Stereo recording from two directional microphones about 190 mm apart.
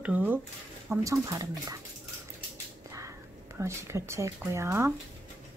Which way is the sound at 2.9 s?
15° right (ahead or behind).